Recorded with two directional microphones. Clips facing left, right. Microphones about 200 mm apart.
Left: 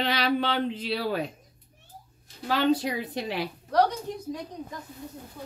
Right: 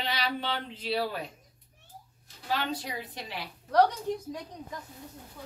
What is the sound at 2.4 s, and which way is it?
Speech, 85° left.